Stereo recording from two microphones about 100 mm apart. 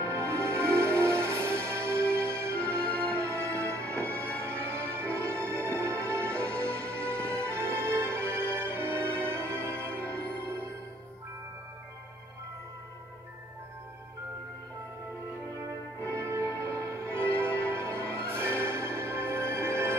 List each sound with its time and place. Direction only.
0.0 s music: 25° right (ahead or behind)
2.8 s music: 15° left (ahead or behind)
3.2 s music: 25° right (ahead or behind)
16.2 s music: 25° right (ahead or behind)